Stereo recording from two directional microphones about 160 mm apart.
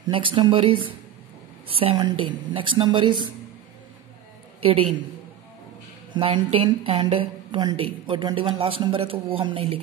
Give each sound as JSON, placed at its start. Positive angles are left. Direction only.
{"t": 0.0, "sound": "a woman's voice", "side_deg": -30}
{"t": 4.6, "sound": "a man's voice", "side_deg": -35}
{"t": 6.1, "sound": "a woman's voice", "side_deg": -30}